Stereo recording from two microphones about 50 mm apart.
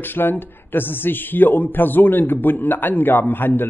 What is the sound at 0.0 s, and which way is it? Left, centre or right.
Speech, left.